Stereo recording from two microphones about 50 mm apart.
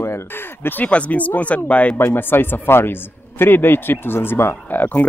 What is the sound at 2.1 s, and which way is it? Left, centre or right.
Speech, left.